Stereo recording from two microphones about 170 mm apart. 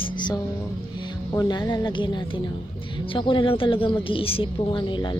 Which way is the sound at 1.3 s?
25° left (ahead or behind).